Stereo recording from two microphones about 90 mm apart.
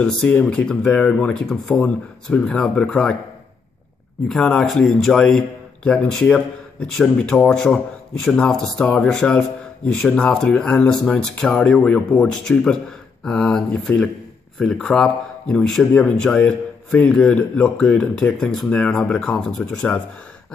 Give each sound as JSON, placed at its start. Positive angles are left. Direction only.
{"t": 0.0, "sound": "speech", "side_deg": 10}
{"t": 4.3, "sound": "speech", "side_deg": 5}
{"t": 16.0, "sound": "speech", "side_deg": 15}